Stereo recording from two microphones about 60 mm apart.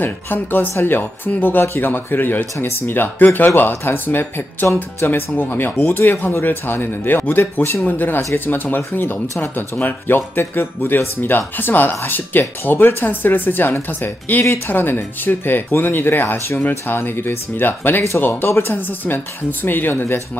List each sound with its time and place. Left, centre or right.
0.0 s speech: left